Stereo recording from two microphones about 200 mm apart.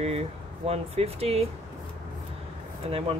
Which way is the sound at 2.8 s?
30° right (ahead or behind).